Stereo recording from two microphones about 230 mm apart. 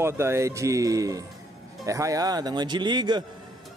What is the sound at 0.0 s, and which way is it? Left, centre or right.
Speech, centre.